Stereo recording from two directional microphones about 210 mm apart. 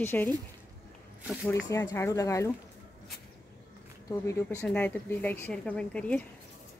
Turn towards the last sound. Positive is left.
turn(degrees=5)  # may be behind; listen again after turning